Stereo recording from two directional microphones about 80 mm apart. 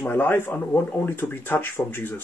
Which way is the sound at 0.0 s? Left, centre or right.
Left.